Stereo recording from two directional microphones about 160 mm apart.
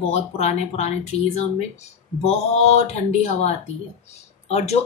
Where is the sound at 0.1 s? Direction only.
40° left (ahead or behind).